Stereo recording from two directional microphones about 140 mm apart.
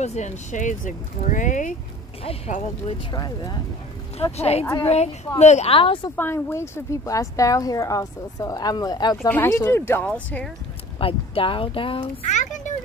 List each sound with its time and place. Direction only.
0.0 s speech: 55° left (ahead or behind)
3.1 s speech: 30° left (ahead or behind)
4.2 s speech: 45° left (ahead or behind)
6.1 s speech: 15° left (ahead or behind)
9.3 s speech: 15° left (ahead or behind)
11.0 s speech: 40° left (ahead or behind)
12.3 s a sound: 60° left (ahead or behind)